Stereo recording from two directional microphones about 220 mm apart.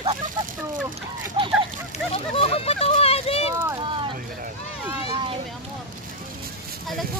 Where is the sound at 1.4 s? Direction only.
25° right (ahead or behind).